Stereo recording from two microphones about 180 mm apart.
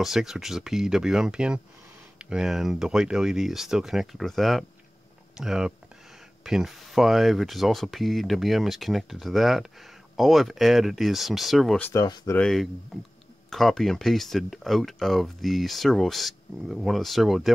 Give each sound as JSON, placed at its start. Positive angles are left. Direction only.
{"t": 0.0, "sound": "speech", "side_deg": 0}
{"t": 11.9, "sound": "speech", "side_deg": 20}
{"t": 12.4, "sound": "speech", "side_deg": 0}